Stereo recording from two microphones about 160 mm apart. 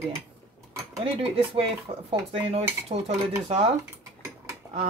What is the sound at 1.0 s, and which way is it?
Speech, 35° right (ahead or behind).